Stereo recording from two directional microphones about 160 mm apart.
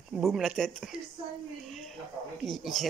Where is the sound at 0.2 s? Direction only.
Centre (ahead or behind).